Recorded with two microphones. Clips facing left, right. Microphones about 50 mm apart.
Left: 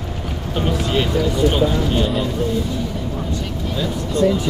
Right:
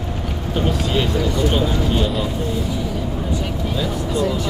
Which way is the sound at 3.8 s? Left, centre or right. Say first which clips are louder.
Left 3 dB; centre.